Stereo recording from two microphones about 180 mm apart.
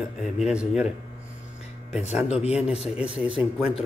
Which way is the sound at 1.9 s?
35° left (ahead or behind).